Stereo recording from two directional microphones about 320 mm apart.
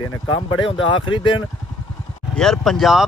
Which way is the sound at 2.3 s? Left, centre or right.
Centre.